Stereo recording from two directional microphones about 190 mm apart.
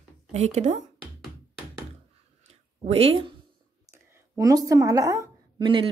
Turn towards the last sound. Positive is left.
turn(degrees=-25)  # may be behind; listen again after turning